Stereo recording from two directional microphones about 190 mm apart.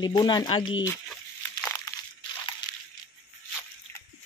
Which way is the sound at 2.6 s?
20° left (ahead or behind).